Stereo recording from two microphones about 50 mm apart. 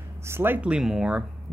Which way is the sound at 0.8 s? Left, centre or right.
Centre.